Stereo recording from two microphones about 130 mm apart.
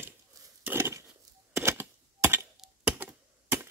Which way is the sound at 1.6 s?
20° right (ahead or behind).